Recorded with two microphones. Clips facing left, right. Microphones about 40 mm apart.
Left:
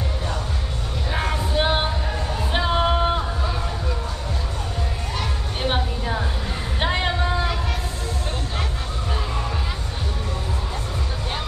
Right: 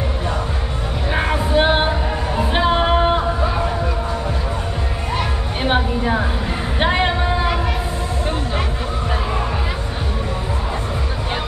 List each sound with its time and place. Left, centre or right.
1.1 s music: right
5.6 s music: right
6.8 s a sound: right